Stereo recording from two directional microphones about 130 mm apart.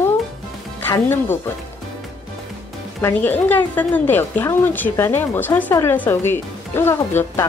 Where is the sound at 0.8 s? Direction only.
15° left (ahead or behind).